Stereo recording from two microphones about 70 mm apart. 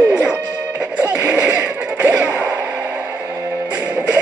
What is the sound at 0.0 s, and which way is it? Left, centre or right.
Music, centre.